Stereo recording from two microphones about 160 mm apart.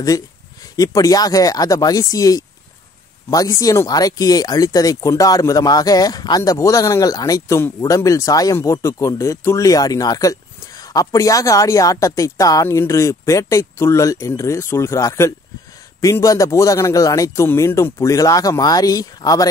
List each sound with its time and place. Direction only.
0.7 s speech: 25° left (ahead or behind)